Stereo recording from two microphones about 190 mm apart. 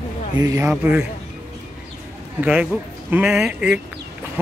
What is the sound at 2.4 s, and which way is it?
Speech, 10° right (ahead or behind).